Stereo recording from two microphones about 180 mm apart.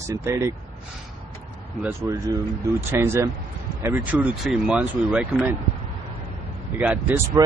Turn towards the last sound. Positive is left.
turn(degrees=-10)  # may be behind; listen again after turning